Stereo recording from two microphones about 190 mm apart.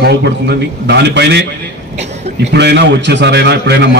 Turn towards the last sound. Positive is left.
turn(degrees=-60)  # may be behind; listen again after turning